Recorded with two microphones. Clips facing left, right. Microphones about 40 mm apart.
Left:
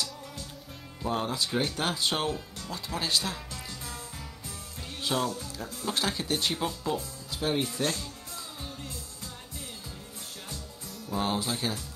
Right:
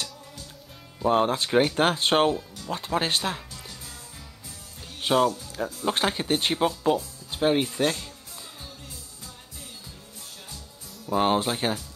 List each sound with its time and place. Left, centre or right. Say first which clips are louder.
1.0 s speech: right 8 dB; right
5.0 s speech: right 8 dB; right
11.1 s speech: right 7 dB; right